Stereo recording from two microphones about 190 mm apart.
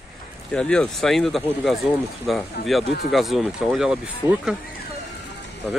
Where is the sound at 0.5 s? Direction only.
5° left (ahead or behind).